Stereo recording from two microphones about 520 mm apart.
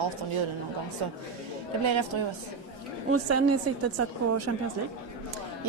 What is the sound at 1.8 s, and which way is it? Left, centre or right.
Speech, right.